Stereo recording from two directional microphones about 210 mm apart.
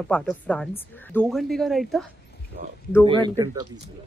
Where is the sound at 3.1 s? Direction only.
20° right (ahead or behind).